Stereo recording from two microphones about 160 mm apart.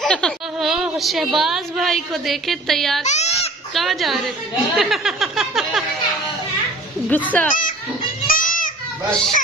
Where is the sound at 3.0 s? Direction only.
45° left (ahead or behind).